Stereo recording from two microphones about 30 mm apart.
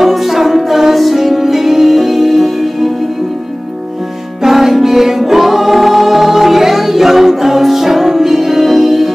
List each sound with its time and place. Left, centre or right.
0.0 s music: centre
4.4 s music: centre